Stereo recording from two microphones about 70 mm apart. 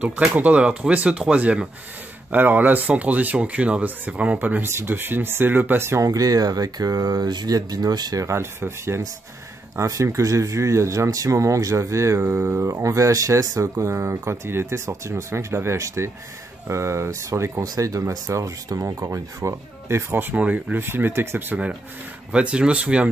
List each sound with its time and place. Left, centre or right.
0.0 s speech: centre; by 6.0 s right
6.0 s speech: right
8.3 s speech: right
20.3 s speech: centre
20.7 s speech: right
22.3 s speech: centre